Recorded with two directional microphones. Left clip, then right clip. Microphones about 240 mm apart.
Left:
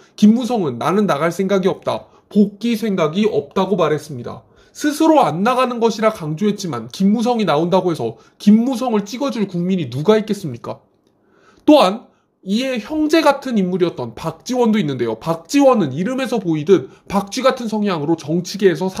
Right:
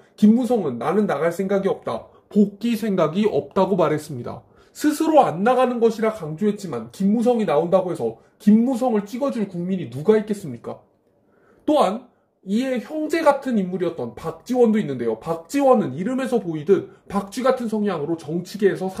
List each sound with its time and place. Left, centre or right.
0.1 s speech: left
2.6 s speech: centre
4.9 s a woman's voice: left